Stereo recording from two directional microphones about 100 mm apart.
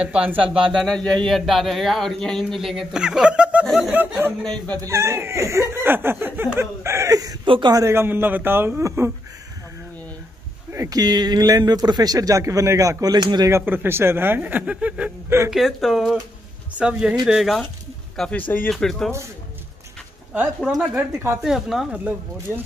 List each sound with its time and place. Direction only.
0.0 s speech: 10° right (ahead or behind)
0.5 s speech: centre (ahead or behind); by 4.1 s 15° right (ahead or behind)
4.4 s speech: 10° left (ahead or behind)
4.8 s speech: 30° right (ahead or behind)
7.4 s speech: 60° right (ahead or behind)
7.7 s speech: 25° right (ahead or behind)
10.7 s speech: 35° right (ahead or behind)
13.5 s speech: 25° right (ahead or behind)
15.2 s speech: 25° right (ahead or behind)
15.5 s speech: 5° right (ahead or behind)
21.4 s speech: 5° right (ahead or behind)